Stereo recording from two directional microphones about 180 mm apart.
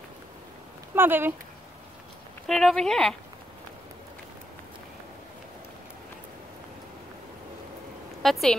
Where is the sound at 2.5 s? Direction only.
Centre (ahead or behind).